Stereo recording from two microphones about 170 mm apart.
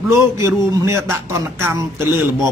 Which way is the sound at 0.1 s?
15° right (ahead or behind).